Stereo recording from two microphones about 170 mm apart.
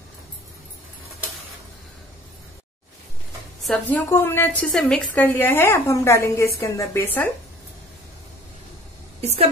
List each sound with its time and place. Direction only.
3.6 s a woman's voice: 10° left (ahead or behind)
9.2 s a woman's voice: 40° right (ahead or behind)